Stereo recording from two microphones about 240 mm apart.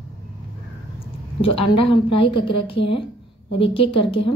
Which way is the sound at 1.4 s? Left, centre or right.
Left.